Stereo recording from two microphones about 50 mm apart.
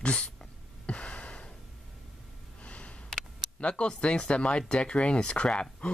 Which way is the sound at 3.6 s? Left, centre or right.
Left.